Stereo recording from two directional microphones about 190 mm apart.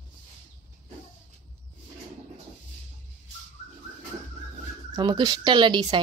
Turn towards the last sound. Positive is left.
turn(degrees=-25)  # may be behind; listen again after turning